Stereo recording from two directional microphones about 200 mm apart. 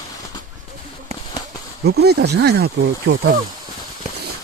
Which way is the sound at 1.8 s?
55° right (ahead or behind).